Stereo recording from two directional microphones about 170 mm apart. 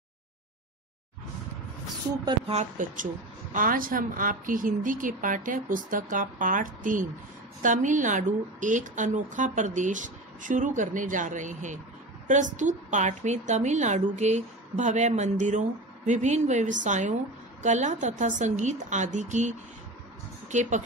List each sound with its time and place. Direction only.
2.2 s a woman's voice: 35° right (ahead or behind)
3.5 s a woman's voice: 55° right (ahead or behind)